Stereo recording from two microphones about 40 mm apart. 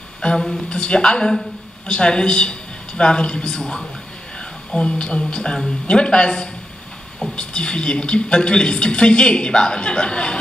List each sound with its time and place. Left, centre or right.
0.4 s a woman's voice: centre
0.7 s a woman's voice: left
4.4 s a sound: left
5.2 s a woman's voice: left